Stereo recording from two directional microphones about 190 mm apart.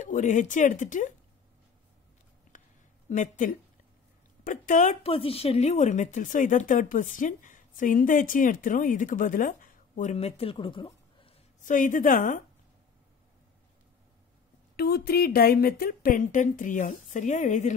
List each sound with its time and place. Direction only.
0.0 s a woman's voice: 40° left (ahead or behind)
2.5 s a sound: 40° left (ahead or behind)
3.1 s a woman's voice: 40° left (ahead or behind); by 11.3 s 25° left (ahead or behind)
11.6 s speech: 45° left (ahead or behind)
14.8 s speech: 55° left (ahead or behind); by 17.7 s 40° left (ahead or behind)